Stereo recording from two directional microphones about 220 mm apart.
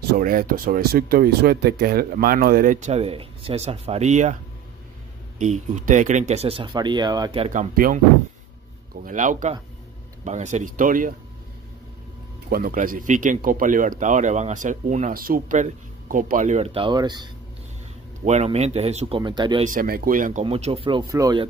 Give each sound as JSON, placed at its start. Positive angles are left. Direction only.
{"t": 0.1, "sound": "speech", "side_deg": -40}
{"t": 5.4, "sound": "speech", "side_deg": -35}
{"t": 9.0, "sound": "speech", "side_deg": -35}
{"t": 12.4, "sound": "speech", "side_deg": -45}
{"t": 18.2, "sound": "speech", "side_deg": -30}
{"t": 19.6, "sound": "speech", "side_deg": -40}